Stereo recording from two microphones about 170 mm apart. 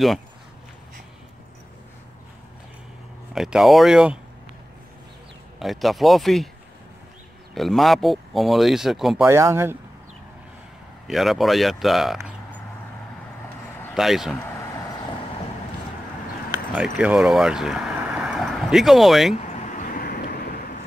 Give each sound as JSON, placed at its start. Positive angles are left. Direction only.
{"t": 3.3, "sound": "speech", "side_deg": -5}
{"t": 5.6, "sound": "speech", "side_deg": 0}
{"t": 7.5, "sound": "speech", "side_deg": 0}
{"t": 9.2, "sound": "speech", "side_deg": -15}
{"t": 11.1, "sound": "speech", "side_deg": 0}
{"t": 13.9, "sound": "speech", "side_deg": 0}
{"t": 16.7, "sound": "speech", "side_deg": -5}
{"t": 19.4, "sound": "vehicle", "side_deg": 45}